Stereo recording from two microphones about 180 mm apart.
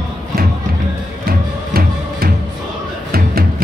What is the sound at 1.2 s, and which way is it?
Music, 55° right (ahead or behind).